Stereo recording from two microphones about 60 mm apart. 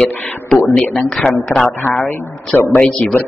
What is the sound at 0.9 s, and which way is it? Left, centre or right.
Speech, centre.